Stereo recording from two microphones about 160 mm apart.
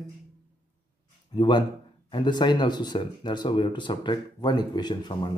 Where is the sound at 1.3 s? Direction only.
25° left (ahead or behind).